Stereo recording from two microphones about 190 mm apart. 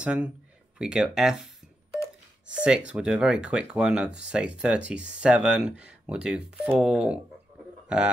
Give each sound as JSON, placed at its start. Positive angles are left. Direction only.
{"t": 0.0, "sound": "speech", "side_deg": -5}